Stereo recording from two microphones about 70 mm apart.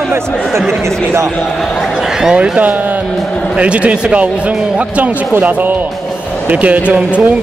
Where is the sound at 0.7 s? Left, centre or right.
Right.